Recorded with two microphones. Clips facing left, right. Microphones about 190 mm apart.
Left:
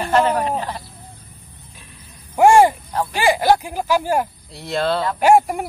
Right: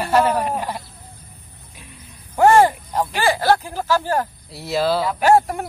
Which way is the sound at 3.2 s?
15° left (ahead or behind).